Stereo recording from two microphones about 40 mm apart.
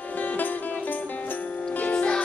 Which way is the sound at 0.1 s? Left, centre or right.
Left.